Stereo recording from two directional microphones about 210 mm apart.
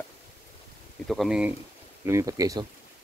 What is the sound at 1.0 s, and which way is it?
Speech, centre (ahead or behind).